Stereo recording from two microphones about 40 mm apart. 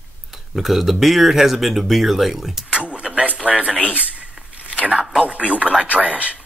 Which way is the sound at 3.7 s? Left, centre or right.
Left.